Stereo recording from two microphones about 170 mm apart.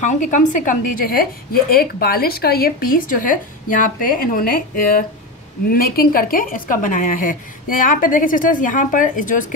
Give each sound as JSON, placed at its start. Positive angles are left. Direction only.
{"t": 0.0, "sound": "a woman's voice", "side_deg": 45}